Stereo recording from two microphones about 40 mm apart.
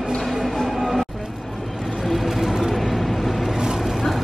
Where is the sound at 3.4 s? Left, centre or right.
Centre.